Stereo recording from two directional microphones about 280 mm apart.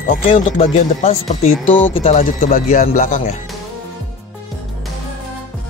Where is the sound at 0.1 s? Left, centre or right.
Left.